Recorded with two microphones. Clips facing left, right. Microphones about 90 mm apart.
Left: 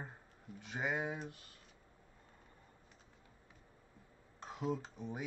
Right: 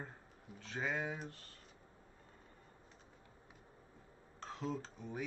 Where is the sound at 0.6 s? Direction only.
15° left (ahead or behind).